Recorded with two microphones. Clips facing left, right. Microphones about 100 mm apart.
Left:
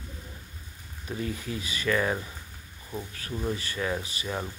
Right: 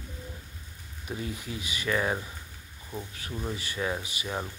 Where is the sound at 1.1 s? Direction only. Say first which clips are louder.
Left 3 dB; 10° right (ahead or behind).